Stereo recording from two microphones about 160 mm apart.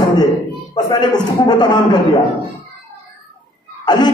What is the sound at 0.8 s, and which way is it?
A man's voice, 25° left (ahead or behind).